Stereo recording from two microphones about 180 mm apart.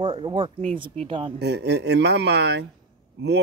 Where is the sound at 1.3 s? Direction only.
70° right (ahead or behind).